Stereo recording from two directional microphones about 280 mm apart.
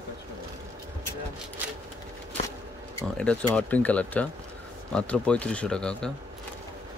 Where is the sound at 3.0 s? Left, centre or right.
Centre.